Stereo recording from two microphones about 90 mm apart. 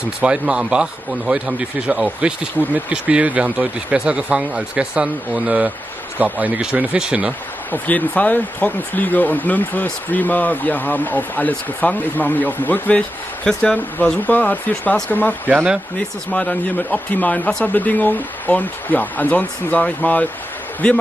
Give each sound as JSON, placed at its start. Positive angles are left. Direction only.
{"t": 0.2, "sound": "a man's voice", "side_deg": -10}
{"t": 7.7, "sound": "speech", "side_deg": 15}